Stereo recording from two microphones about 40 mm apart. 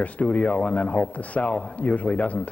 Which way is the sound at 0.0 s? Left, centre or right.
Left.